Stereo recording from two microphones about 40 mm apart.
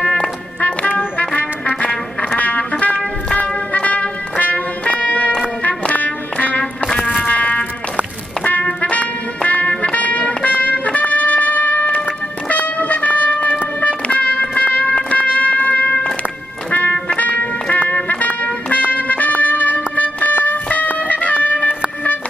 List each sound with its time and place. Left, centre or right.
0.0 s music: left
2.7 s music: left
3.3 s music: left
8.9 s music: left